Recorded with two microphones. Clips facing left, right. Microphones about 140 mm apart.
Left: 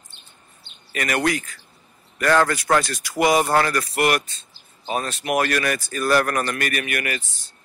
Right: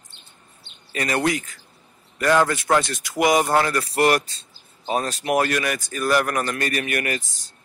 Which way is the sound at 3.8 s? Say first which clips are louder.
Right 2 dB; 35° right (ahead or behind).